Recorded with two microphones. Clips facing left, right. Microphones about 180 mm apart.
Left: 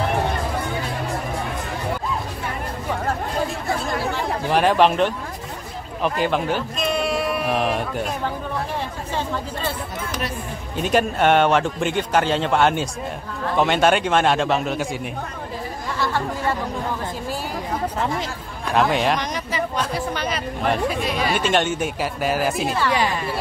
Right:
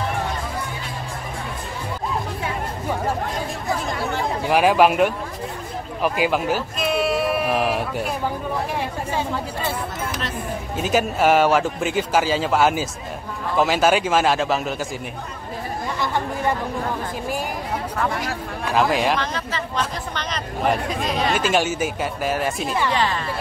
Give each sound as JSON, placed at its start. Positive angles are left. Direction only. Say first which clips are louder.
{"t": 4.5, "sound": "speech", "louder": "right 1 dB", "side_deg": -10}
{"t": 10.8, "sound": "a man's voice", "louder": "left 1 dB", "side_deg": -5}
{"t": 17.9, "sound": "speech", "louder": "even", "side_deg": 20}
{"t": 18.7, "sound": "a man's voice", "louder": "even", "side_deg": 0}
{"t": 19.1, "sound": "a man's voice", "louder": "left 1 dB", "side_deg": 15}